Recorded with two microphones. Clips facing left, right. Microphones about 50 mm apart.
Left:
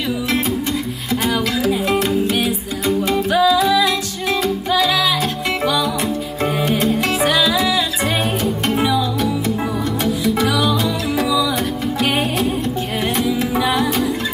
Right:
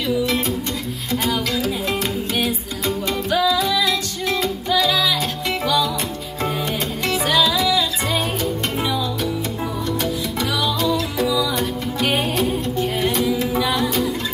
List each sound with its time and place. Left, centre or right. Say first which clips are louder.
1.1 s music: left 3 dB; centre
3.1 s music: left 4 dB; left
7.3 s music: left 1 dB; centre
13.4 s music: left 2 dB; centre